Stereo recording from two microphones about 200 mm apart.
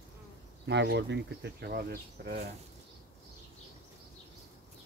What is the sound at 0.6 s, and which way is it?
Speech, 60° right (ahead or behind).